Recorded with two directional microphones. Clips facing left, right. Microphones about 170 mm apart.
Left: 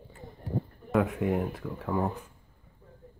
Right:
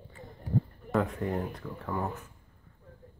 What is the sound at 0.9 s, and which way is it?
Speech, 5° left (ahead or behind).